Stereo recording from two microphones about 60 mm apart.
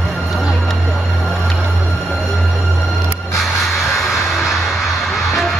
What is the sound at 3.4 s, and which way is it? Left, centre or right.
Music, centre.